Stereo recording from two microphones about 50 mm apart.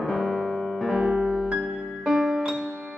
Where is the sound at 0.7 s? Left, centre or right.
Centre.